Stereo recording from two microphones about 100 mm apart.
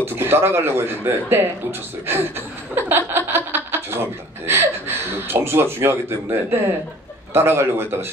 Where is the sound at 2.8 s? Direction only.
20° right (ahead or behind).